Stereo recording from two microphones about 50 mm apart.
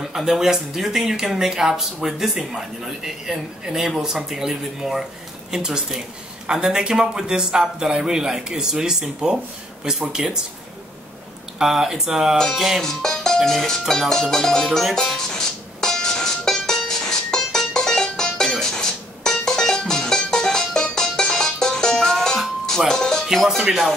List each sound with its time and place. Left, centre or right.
0.0 s speech: centre
11.5 s speech: centre
12.5 s music: centre
12.8 s music: centre
23.2 s music: centre
23.6 s speech: centre